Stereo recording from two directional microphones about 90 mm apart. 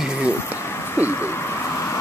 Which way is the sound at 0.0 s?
10° right (ahead or behind).